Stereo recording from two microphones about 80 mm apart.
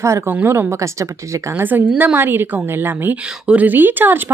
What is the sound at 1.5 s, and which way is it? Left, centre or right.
Speech, right.